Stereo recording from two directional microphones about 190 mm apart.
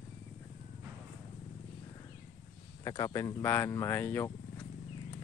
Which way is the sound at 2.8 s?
20° left (ahead or behind).